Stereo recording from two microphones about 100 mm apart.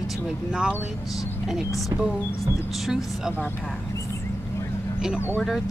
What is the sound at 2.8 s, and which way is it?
Speech, 5° right (ahead or behind).